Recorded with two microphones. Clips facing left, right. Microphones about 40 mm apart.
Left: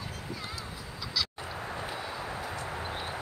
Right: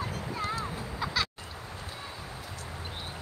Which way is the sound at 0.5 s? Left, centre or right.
Right.